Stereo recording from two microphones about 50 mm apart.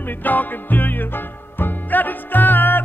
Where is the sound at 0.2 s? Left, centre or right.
Left.